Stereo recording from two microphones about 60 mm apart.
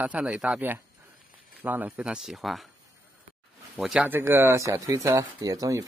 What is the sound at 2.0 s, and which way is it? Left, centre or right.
Speech, centre.